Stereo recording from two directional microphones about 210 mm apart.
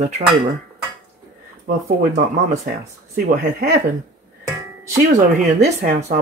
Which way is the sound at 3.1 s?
45° right (ahead or behind).